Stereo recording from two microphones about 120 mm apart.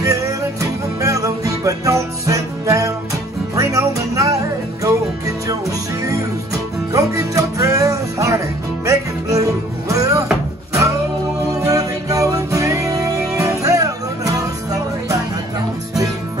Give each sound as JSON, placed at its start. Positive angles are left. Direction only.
{"t": 0.0, "sound": "music", "side_deg": -25}
{"t": 11.5, "sound": "music", "side_deg": -30}